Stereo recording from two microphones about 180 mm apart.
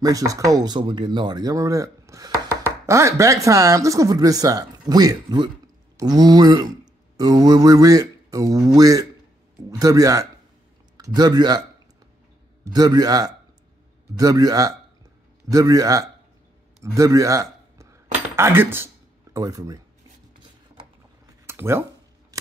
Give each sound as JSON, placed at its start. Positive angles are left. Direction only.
{"t": 0.0, "sound": "speech", "side_deg": -20}
{"t": 12.6, "sound": "a man's voice", "side_deg": -20}
{"t": 21.5, "sound": "speech", "side_deg": -15}
{"t": 22.3, "sound": "scissors", "side_deg": -20}